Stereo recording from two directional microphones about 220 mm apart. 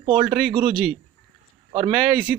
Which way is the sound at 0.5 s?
20° right (ahead or behind).